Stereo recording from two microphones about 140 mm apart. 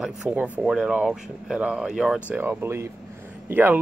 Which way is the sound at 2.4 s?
15° right (ahead or behind).